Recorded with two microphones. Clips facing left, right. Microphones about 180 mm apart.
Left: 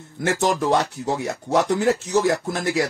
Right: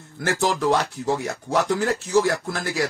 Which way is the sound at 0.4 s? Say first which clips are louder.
Left 1 dB; 20° left (ahead or behind).